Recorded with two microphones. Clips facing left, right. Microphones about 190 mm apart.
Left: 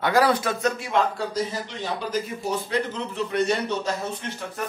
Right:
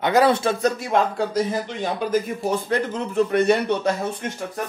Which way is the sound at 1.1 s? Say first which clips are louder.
Right 5 dB; 50° right (ahead or behind).